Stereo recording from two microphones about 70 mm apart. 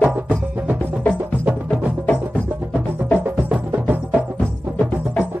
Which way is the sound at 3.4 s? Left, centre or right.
Right.